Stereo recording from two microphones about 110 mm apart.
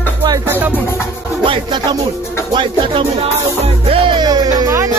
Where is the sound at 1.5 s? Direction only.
45° right (ahead or behind).